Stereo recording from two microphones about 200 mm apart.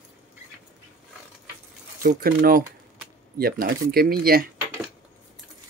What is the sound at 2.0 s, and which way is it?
Speech, 45° right (ahead or behind).